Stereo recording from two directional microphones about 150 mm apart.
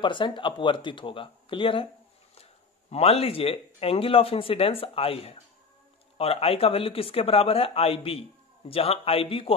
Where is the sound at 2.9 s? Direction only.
40° left (ahead or behind).